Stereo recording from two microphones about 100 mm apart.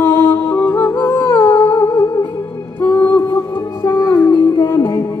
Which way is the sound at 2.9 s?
15° left (ahead or behind).